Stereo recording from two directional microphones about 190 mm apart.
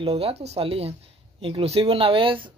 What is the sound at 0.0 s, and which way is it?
Speech, 30° right (ahead or behind).